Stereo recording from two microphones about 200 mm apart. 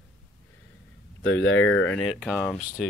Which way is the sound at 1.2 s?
70° left (ahead or behind).